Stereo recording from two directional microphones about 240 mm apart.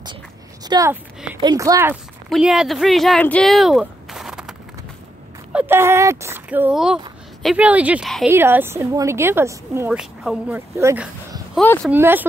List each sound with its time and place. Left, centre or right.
0.7 s a woman's voice: centre
11.5 s speech: centre
11.9 s a woman's voice: centre